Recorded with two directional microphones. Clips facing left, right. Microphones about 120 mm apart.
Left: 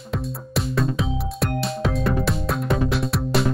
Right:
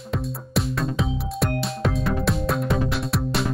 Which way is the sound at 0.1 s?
Centre (ahead or behind).